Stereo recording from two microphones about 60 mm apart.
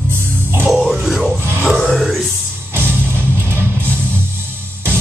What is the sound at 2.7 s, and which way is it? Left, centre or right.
Music, right.